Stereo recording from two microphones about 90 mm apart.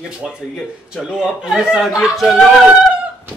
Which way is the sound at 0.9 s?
5° right (ahead or behind).